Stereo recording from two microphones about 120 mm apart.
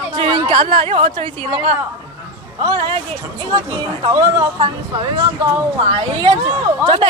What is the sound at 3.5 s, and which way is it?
Speech, 40° right (ahead or behind).